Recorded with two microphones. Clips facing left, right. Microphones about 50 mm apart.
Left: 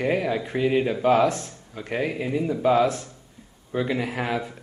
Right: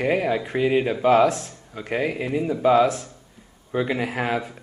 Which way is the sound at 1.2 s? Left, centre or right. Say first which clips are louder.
Right 2 dB; centre.